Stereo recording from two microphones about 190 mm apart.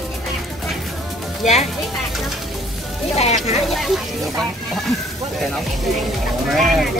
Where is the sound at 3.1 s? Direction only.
35° left (ahead or behind).